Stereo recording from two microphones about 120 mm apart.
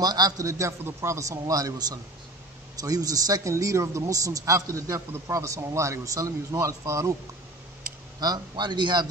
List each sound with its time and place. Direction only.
0.0 s speech: 35° right (ahead or behind)
8.2 s a man's voice: 35° right (ahead or behind)